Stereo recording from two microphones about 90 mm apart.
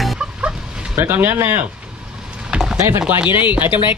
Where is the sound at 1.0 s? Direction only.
25° right (ahead or behind).